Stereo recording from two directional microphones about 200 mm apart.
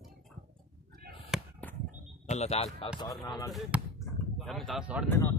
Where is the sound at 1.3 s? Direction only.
5° right (ahead or behind).